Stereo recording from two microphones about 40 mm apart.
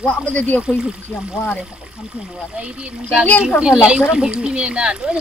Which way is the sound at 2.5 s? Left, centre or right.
Right.